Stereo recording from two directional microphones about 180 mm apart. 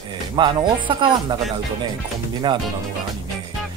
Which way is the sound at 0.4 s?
25° right (ahead or behind).